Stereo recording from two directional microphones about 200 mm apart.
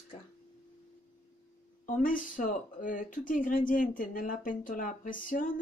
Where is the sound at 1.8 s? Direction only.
40° left (ahead or behind).